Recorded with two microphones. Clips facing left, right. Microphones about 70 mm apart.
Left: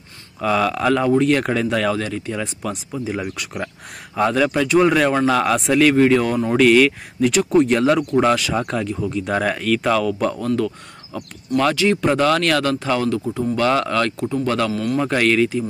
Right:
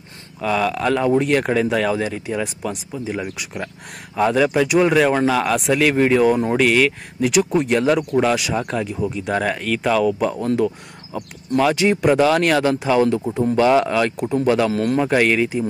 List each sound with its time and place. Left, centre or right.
0.4 s speech: centre
10.4 s speech: right
11.7 s speech: right
12.0 s speech: centre
14.7 s a man's voice: right
15.0 s speech: centre